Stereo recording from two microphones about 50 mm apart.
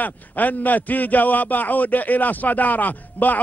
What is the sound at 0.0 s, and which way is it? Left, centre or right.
A man's voice, left.